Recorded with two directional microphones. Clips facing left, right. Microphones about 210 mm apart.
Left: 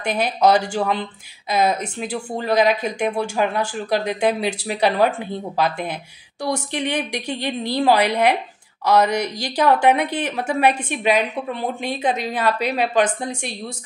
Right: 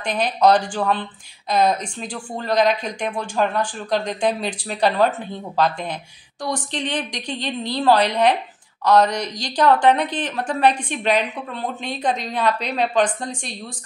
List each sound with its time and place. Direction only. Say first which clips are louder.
0.0 s a woman's voice: even; 5° left (ahead or behind)